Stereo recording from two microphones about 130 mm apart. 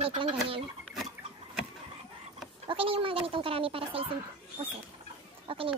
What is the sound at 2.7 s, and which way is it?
Chicken, 45° right (ahead or behind).